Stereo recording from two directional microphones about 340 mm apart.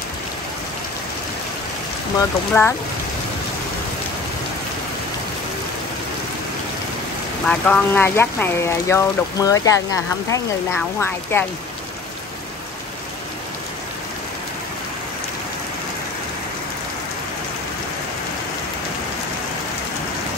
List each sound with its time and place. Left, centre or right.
2.5 s speech: centre
7.4 s speech: centre